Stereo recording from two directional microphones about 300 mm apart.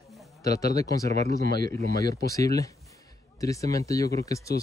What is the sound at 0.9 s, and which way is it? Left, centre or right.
Speech, centre.